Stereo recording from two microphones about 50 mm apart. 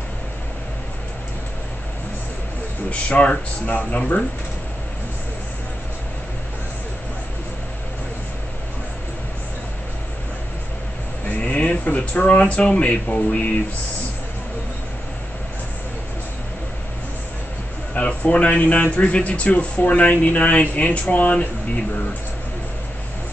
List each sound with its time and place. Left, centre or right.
2.9 s speech: left
11.2 s a sound: left
11.8 s speech: left
17.9 s speech: left